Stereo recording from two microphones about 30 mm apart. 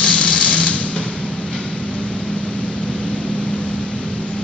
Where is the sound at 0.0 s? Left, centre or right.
Left.